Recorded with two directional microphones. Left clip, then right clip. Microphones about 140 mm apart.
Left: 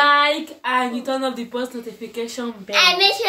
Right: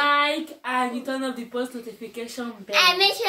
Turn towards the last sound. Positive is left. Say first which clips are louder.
# left 3 dB
turn(degrees=0)  # may be behind; listen again after turning